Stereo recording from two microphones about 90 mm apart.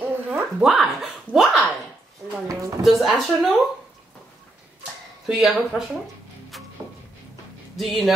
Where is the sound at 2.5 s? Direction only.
40° right (ahead or behind).